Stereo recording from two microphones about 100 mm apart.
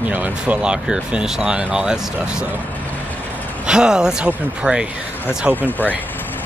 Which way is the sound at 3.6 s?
5° right (ahead or behind).